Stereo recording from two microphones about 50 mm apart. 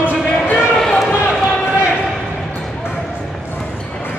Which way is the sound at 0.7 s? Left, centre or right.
Centre.